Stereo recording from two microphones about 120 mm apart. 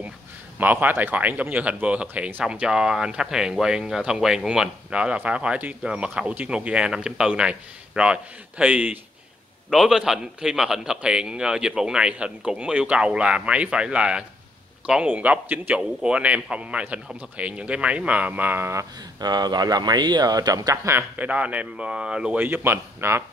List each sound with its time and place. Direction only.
0.6 s speech: 15° right (ahead or behind)
9.7 s speech: centre (ahead or behind); by 18.9 s 20° right (ahead or behind)
19.1 s speech: 35° right (ahead or behind); by 23.2 s 20° right (ahead or behind)